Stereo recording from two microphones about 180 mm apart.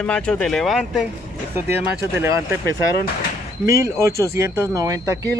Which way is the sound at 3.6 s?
15° right (ahead or behind).